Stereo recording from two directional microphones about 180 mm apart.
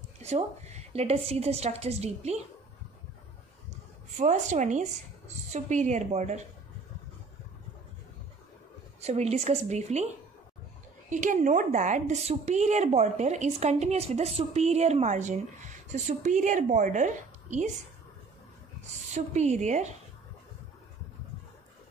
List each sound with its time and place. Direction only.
0.2 s a woman's voice: 40° right (ahead or behind)
4.2 s a woman's voice: 40° right (ahead or behind)
9.0 s a woman's voice: 35° right (ahead or behind)
11.1 s a woman's voice: 45° right (ahead or behind)
19.1 s a woman's voice: 40° right (ahead or behind)